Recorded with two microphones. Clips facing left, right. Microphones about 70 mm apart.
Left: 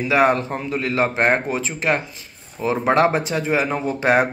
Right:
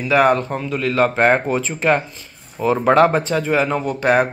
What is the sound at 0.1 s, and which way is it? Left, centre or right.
Speech, centre.